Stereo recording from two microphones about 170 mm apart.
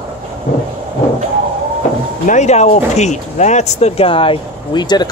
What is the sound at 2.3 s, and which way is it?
Speech, 40° left (ahead or behind).